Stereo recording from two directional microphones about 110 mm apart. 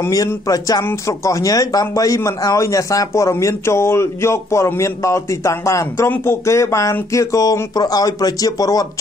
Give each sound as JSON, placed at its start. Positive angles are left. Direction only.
{"t": 0.0, "sound": "speech", "side_deg": 30}